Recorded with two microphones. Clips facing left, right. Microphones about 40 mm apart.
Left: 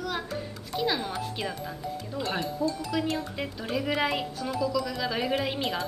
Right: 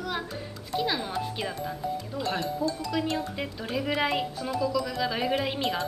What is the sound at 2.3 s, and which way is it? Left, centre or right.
Speech, centre.